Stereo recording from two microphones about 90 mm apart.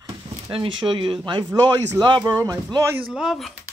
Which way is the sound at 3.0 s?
5° right (ahead or behind).